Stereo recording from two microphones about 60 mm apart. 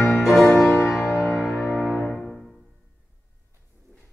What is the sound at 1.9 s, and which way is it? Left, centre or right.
Music, left.